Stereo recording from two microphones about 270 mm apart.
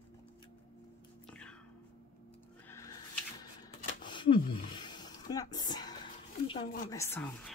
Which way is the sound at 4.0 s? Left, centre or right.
Centre.